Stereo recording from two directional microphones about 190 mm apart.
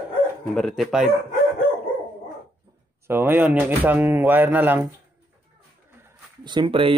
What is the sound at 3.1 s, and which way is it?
A man's voice, 10° right (ahead or behind).